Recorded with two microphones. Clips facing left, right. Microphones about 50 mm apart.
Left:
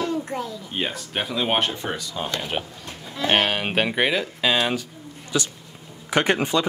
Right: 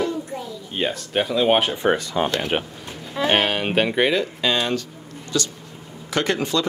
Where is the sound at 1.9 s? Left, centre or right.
Right.